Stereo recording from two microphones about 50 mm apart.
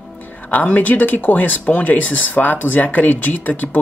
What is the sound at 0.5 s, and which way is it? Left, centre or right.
Speech, left.